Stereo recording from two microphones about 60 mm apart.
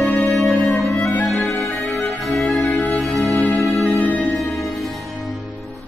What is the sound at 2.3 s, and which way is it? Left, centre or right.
Music, centre.